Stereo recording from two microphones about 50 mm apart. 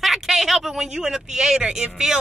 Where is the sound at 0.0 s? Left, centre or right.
Centre.